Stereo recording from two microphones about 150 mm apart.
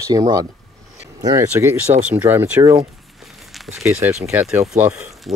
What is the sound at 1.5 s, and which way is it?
Speech, 15° right (ahead or behind).